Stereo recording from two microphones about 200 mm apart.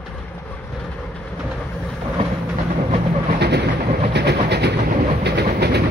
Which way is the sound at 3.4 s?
55° right (ahead or behind).